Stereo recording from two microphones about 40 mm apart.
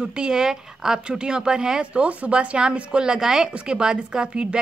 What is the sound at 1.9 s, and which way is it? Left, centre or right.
Speech, right.